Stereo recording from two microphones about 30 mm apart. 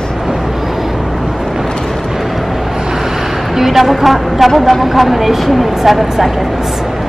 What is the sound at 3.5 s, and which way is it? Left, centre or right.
A woman's voice, centre.